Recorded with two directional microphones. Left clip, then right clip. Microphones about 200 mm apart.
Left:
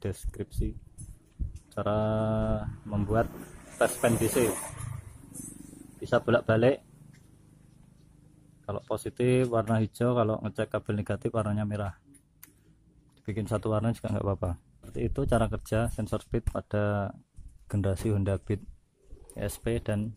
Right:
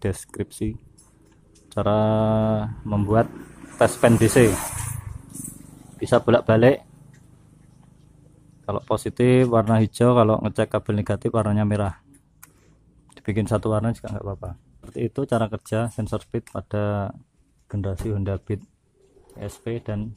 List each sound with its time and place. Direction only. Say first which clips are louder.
0.0 s speech: right 9 dB; 10° right (ahead or behind)
5.9 s speech: right 7 dB; 10° right (ahead or behind)
8.6 s speech: right 9 dB; 10° right (ahead or behind)
13.1 s speech: right 9 dB; 10° right (ahead or behind)
14.1 s speech: left 2 dB; 15° left (ahead or behind)
14.8 s speech: right 6 dB; centre (ahead or behind)
17.6 s speech: right 1 dB; 15° left (ahead or behind)